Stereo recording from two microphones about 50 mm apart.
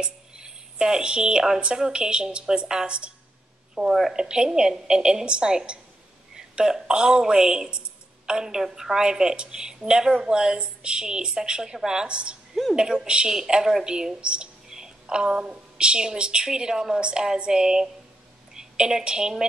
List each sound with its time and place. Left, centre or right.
0.0 s a woman's voice: centre